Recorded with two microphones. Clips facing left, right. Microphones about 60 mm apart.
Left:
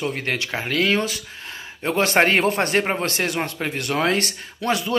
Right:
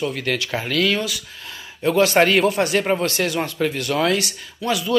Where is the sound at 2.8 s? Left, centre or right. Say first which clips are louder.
Right 3 dB; left.